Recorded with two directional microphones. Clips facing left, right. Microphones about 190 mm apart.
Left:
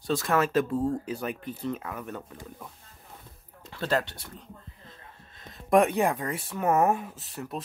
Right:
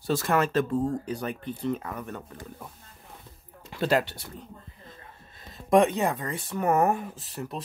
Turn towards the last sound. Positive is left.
turn(degrees=0)  # may be behind; listen again after turning